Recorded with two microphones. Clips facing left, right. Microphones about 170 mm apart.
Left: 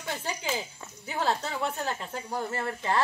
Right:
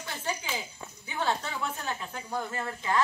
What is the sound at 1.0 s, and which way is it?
Speech, 35° left (ahead or behind).